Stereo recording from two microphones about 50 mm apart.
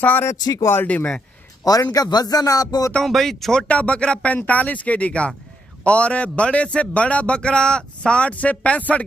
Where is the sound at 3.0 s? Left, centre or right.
Centre.